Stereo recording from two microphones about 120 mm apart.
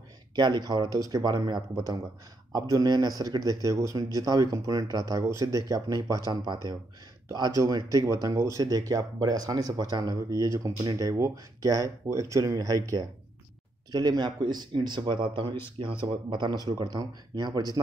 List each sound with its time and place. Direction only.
0.4 s a man's voice: 40° right (ahead or behind)
2.7 s a man's voice: 35° right (ahead or behind)